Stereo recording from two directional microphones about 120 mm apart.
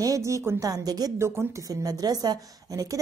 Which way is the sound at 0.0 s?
25° right (ahead or behind).